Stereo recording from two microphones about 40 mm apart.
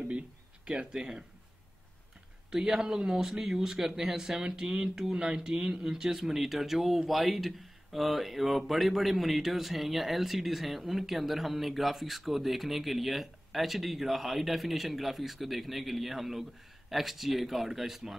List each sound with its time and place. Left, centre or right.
0.9 s speech: centre
2.5 s speech: centre